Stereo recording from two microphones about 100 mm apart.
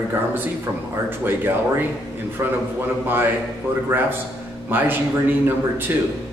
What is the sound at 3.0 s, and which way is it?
Speech, 20° right (ahead or behind).